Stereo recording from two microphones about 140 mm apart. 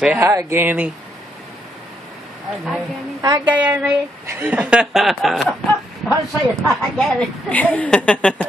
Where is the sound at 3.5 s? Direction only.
10° right (ahead or behind).